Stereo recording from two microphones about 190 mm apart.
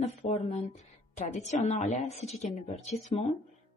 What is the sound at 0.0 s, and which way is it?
Speech, 35° left (ahead or behind).